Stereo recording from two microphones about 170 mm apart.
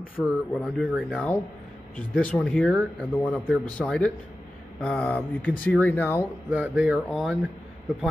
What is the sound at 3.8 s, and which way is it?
Speech, 5° left (ahead or behind).